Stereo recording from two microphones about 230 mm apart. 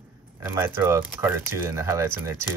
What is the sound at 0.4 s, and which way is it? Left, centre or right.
Speech, centre.